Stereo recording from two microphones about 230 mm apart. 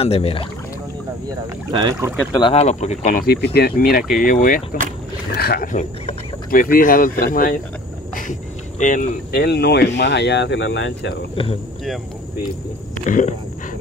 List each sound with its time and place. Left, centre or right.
0.0 s speech: left
1.7 s speech: centre
2.3 s speech: left
13.0 s speech: left